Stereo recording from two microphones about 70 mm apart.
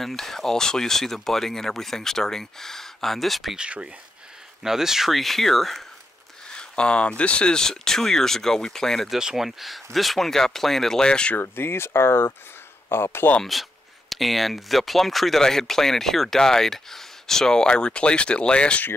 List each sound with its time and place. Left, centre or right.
0.0 s speech: centre
3.5 s speech: centre
6.5 s speech: centre
11.3 s speech: left
13.4 s speech: centre